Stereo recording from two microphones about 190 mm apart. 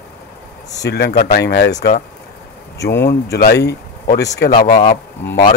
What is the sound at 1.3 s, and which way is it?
Speech, 60° left (ahead or behind).